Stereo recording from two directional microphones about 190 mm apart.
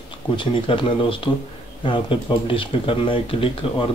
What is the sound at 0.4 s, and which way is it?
Speech, 25° left (ahead or behind).